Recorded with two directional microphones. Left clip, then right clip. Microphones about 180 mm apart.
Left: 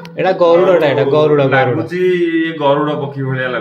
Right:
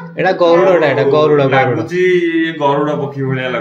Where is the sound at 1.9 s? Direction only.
15° right (ahead or behind).